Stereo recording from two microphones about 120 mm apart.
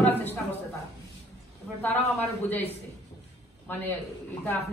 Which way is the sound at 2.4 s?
15° left (ahead or behind).